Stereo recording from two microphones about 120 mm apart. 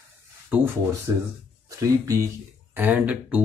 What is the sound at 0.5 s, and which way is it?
Speech, 10° right (ahead or behind).